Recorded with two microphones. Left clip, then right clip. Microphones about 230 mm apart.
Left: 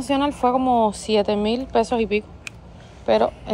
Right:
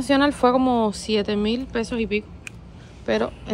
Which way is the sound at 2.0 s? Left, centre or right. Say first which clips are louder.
Left 3 dB; centre.